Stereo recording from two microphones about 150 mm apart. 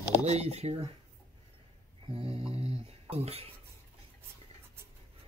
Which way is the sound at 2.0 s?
40° right (ahead or behind).